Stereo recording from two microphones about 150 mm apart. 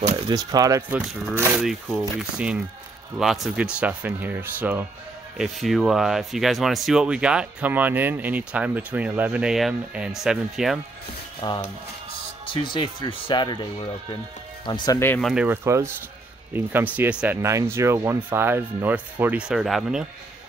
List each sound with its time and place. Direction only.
0.3 s speech: 25° right (ahead or behind)
1.6 s speech: 5° right (ahead or behind)
5.4 s speech: centre (ahead or behind)
11.4 s speech: 30° left (ahead or behind)
12.7 s speech: 30° left (ahead or behind)
15.0 s speech: 15° left (ahead or behind)
15.4 s speech: 15° right (ahead or behind)